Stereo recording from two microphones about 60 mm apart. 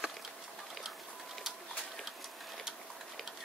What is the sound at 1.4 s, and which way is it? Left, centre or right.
Pigeon, centre.